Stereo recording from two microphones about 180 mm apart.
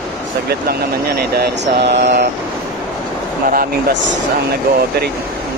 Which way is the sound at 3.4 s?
55° right (ahead or behind).